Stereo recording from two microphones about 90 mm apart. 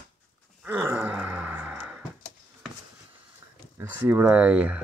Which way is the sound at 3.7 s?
25° right (ahead or behind).